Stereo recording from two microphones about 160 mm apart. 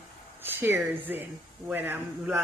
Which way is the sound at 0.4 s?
15° right (ahead or behind).